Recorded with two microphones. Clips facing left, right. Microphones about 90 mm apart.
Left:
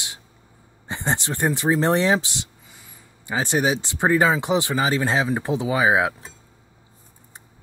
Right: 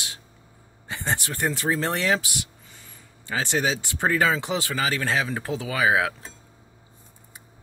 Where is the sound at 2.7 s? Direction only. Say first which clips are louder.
Left 1 dB; 10° left (ahead or behind).